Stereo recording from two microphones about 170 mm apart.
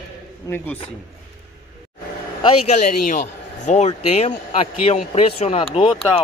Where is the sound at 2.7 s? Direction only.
50° left (ahead or behind).